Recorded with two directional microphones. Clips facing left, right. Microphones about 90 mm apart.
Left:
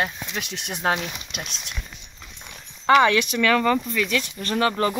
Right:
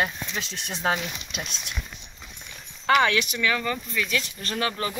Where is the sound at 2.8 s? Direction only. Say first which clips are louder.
Left 4 dB; 35° left (ahead or behind).